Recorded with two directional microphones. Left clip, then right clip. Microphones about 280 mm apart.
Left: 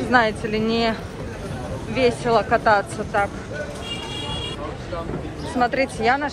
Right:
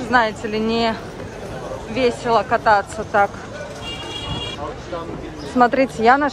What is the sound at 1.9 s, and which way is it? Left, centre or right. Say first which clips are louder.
Speech: right 1 dB; centre.